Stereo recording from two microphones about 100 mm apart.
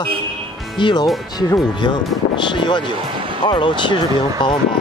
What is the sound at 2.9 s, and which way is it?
Music, 55° right (ahead or behind).